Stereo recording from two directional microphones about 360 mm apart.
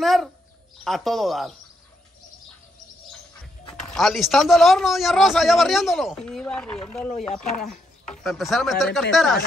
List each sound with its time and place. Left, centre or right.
0.0 s bird: centre
0.8 s a man's voice: centre
3.9 s a man's voice: centre